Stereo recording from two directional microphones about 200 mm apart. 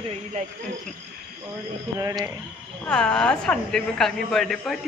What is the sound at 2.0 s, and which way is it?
Speech, 20° right (ahead or behind).